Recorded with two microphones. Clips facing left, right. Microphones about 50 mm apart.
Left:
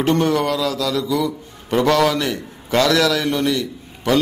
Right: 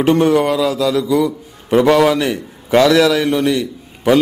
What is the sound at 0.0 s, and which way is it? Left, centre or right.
A man's voice, centre.